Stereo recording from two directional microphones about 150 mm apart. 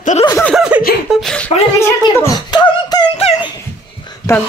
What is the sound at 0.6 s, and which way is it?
Laughter, 10° right (ahead or behind).